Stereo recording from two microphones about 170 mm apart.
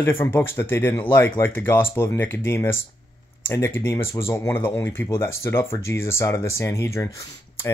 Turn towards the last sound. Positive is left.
turn(degrees=15)  # may be behind; listen again after turning